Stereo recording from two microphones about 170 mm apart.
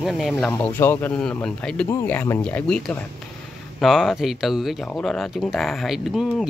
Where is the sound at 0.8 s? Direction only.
15° left (ahead or behind).